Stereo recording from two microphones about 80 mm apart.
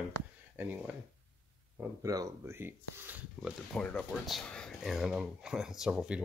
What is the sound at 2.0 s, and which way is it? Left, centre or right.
Speech, right.